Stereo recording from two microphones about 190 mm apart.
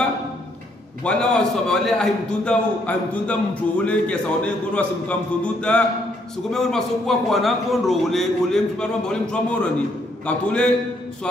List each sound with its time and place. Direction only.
1.0 s a man's voice: 5° left (ahead or behind)